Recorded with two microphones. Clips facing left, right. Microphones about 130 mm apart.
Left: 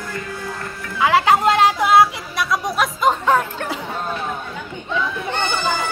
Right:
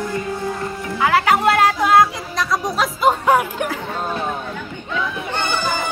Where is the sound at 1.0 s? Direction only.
20° left (ahead or behind); by 3.7 s 10° right (ahead or behind).